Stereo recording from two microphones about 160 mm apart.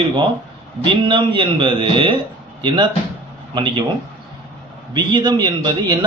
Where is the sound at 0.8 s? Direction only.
30° right (ahead or behind).